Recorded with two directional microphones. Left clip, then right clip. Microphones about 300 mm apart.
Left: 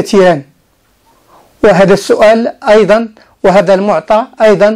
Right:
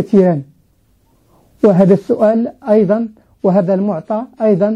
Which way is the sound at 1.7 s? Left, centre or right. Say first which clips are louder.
Left 6 dB; centre.